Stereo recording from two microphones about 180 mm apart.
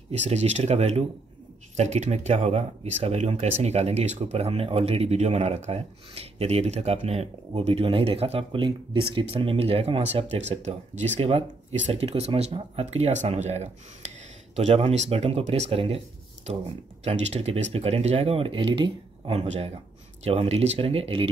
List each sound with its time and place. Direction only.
0.1 s speech: 35° right (ahead or behind)
17.0 s speech: 35° right (ahead or behind)